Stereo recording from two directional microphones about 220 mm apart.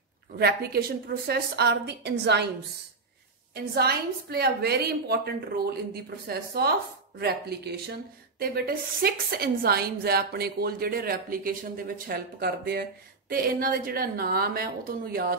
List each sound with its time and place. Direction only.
0.4 s a woman's voice: 45° right (ahead or behind)
3.5 s a woman's voice: 45° right (ahead or behind)